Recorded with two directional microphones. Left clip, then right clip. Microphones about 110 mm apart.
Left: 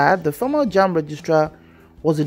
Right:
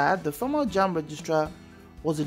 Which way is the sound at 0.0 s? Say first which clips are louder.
Left 8 dB; 30° left (ahead or behind).